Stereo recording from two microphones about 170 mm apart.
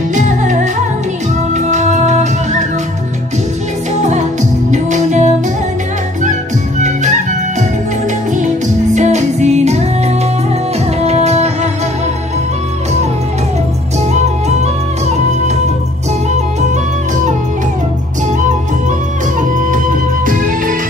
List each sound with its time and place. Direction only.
0.1 s music: 45° right (ahead or behind)
4.0 s music: 45° right (ahead or behind)
6.8 s music: 45° right (ahead or behind)
8.9 s music: 45° right (ahead or behind)
11.0 s music: 40° right (ahead or behind)
20.2 s music: 50° right (ahead or behind)